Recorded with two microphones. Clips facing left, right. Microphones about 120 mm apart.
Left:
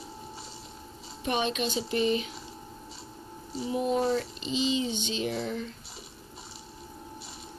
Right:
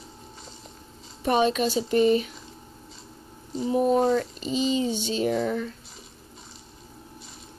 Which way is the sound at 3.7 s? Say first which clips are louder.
Right 6 dB; 45° right (ahead or behind).